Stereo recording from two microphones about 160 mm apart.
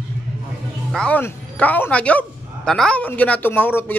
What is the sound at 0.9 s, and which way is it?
Speech, 10° left (ahead or behind).